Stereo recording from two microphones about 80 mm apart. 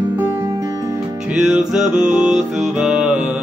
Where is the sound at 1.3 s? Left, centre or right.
Centre.